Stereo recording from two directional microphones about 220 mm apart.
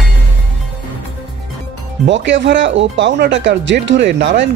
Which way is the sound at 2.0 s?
55° right (ahead or behind).